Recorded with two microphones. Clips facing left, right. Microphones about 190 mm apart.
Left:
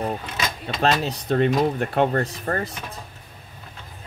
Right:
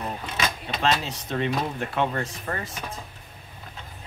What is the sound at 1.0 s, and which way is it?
Speech, 40° left (ahead or behind).